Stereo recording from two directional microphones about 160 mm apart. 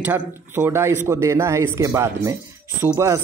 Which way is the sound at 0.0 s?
15° right (ahead or behind).